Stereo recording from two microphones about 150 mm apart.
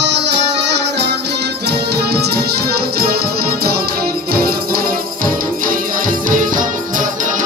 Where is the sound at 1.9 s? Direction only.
90° right.